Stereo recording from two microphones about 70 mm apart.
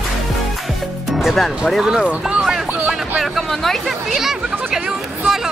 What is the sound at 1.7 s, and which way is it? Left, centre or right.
Speech, centre.